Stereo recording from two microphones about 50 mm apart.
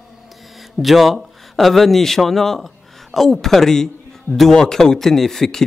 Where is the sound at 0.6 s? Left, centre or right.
Centre.